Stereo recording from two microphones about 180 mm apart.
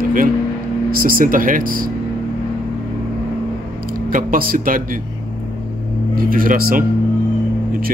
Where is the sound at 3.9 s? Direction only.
50° right (ahead or behind).